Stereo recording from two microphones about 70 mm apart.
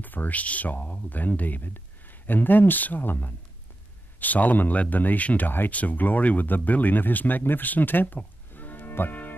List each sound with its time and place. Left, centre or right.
0.0 s speech: left